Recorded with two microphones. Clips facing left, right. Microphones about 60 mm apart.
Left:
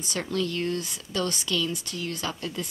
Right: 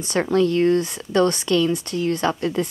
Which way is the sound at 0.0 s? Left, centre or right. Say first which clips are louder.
Right 10 dB; right.